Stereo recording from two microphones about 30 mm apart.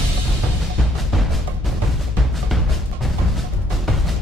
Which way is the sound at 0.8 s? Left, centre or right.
Centre.